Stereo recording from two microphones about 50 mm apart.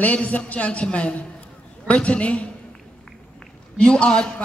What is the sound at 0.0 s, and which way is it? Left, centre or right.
A man's voice, left.